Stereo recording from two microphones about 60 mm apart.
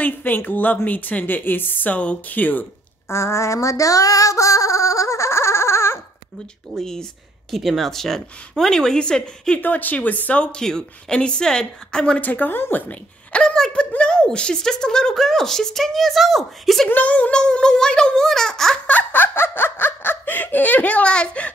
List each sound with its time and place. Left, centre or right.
0.0 s a woman's voice: left
3.1 s female singing: left
6.8 s speech: centre
9.6 s speech: left; by 12.2 s centre
12.2 s speech: left; by 16.9 s centre
16.9 s speech: left
18.9 s laughter: left